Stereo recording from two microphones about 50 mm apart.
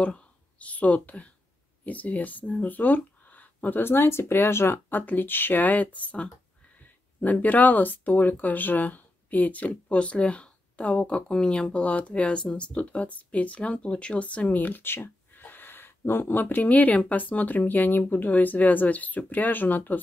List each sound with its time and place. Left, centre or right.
0.0 s speech: left
4.9 s speech: left